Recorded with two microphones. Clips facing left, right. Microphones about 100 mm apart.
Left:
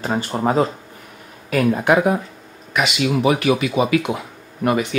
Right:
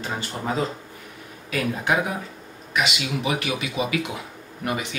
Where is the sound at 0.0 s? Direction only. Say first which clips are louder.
Left 9 dB; 50° left (ahead or behind).